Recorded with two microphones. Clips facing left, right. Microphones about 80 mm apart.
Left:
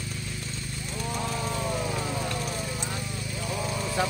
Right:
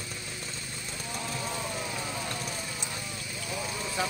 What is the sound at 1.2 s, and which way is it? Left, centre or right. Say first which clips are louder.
Vehicle: left 3 dB; left.